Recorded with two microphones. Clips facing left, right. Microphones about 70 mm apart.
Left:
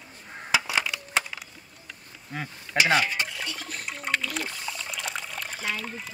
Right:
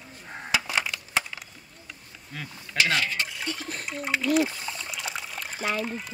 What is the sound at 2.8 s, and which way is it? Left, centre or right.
Stir, centre.